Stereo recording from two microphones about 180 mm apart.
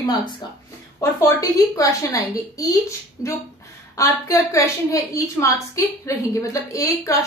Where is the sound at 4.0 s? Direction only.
15° left (ahead or behind).